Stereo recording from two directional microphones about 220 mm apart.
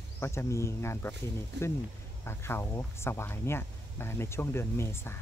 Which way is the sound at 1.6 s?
50° right (ahead or behind).